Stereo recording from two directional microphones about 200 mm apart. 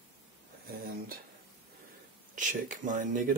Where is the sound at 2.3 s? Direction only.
40° right (ahead or behind).